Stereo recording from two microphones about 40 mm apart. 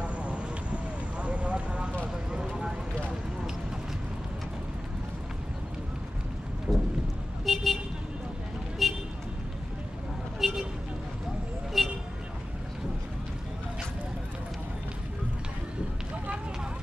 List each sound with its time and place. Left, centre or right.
0.0 s vehicle: right
2.3 s vehicle: centre
6.7 s a sound: centre
7.4 s vehicle: centre
8.8 s vehicle: centre
10.4 s vehicle: centre
11.8 s vehicle: centre